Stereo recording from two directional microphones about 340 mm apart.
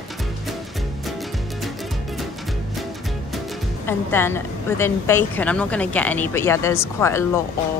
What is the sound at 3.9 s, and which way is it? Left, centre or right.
A woman's voice, centre.